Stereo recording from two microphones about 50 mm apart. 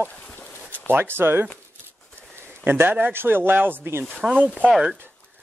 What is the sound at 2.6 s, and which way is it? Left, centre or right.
A man's voice, right.